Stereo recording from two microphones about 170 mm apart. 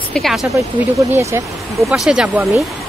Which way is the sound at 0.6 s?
15° right (ahead or behind).